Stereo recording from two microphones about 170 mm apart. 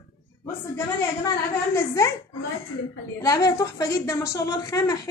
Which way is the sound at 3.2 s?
20° left (ahead or behind).